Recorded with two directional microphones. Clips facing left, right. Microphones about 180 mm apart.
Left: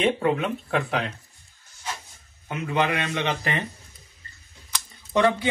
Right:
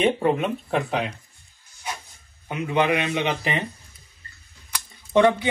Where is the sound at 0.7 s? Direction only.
15° right (ahead or behind).